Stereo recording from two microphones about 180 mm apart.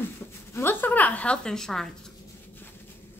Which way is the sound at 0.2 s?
15° left (ahead or behind).